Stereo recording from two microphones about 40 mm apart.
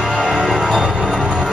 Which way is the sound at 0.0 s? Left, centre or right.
Centre.